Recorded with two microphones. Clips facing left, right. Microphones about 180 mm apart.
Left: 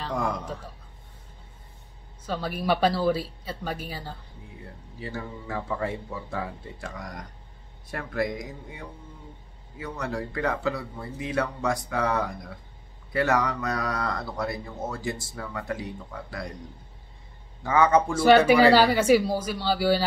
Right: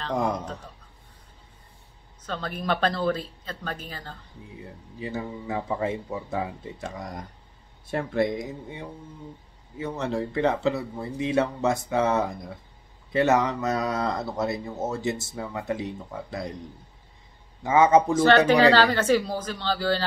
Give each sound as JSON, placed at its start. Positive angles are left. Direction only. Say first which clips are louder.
{"t": 0.1, "sound": "speech", "louder": "right 4 dB", "side_deg": -20}
{"t": 2.2, "sound": "speech", "louder": "left 2 dB", "side_deg": 10}
{"t": 5.0, "sound": "speech", "louder": "right 4 dB", "side_deg": -20}
{"t": 17.6, "sound": "speech", "louder": "right 3 dB", "side_deg": -20}
{"t": 18.1, "sound": "speech", "louder": "left 1 dB", "side_deg": 10}